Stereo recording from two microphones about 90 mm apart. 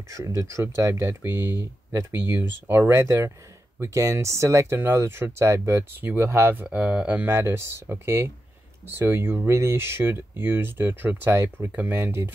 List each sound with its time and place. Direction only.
0.1 s speech: 35° right (ahead or behind); by 7.2 s 15° right (ahead or behind)
7.2 s speech: 30° right (ahead or behind)